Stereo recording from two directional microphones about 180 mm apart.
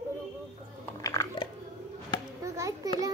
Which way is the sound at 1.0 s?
20° left (ahead or behind).